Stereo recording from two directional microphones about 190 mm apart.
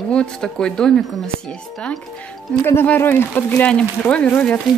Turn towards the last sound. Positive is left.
turn(degrees=5)  # may be behind; listen again after turning